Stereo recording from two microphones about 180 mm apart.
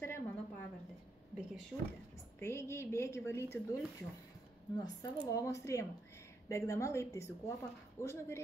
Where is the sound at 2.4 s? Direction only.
15° left (ahead or behind).